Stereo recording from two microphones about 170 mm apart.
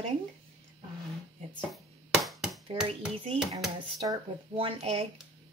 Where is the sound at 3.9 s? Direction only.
25° right (ahead or behind).